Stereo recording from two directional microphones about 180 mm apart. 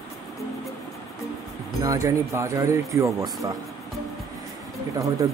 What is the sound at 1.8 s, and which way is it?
Speech, 20° right (ahead or behind).